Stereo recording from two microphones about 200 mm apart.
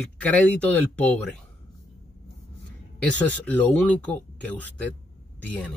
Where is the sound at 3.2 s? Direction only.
5° left (ahead or behind).